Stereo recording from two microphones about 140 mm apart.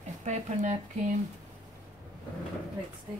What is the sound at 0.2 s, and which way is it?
Speech, 55° right (ahead or behind).